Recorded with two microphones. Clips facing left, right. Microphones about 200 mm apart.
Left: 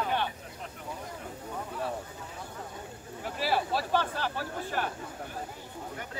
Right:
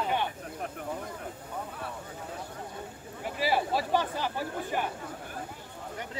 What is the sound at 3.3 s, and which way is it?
Speech, 15° right (ahead or behind).